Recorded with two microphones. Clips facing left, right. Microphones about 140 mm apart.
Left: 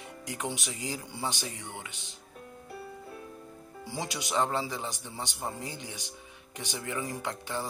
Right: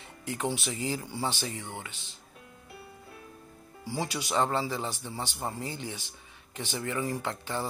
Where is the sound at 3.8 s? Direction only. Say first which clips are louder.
Right 3 dB; 20° left (ahead or behind).